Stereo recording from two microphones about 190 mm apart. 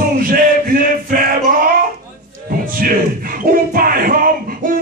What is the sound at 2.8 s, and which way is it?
Speech, 45° right (ahead or behind).